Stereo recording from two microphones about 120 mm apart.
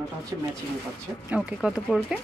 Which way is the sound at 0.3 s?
30° right (ahead or behind).